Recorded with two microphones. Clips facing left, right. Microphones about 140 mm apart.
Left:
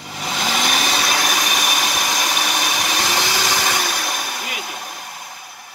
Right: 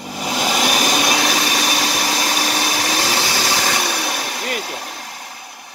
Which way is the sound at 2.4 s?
35° right (ahead or behind).